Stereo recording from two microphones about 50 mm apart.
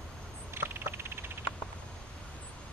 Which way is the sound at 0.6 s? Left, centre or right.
Right.